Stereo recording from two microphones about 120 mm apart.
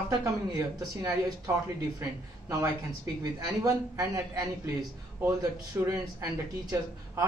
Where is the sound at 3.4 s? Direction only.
30° right (ahead or behind).